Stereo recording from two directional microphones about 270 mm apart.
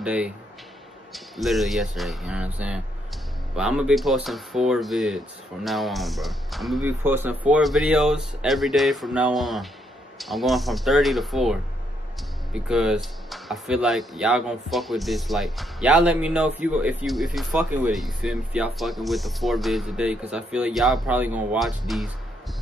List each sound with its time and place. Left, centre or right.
0.0 s speech: centre
12.5 s speech: centre